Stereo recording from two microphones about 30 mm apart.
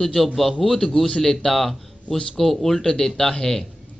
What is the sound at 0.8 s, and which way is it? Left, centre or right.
Speech, left.